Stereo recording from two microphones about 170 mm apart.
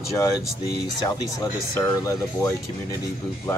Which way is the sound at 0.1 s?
20° left (ahead or behind).